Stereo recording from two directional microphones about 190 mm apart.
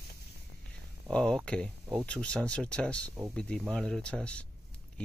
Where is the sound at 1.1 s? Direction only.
5° left (ahead or behind).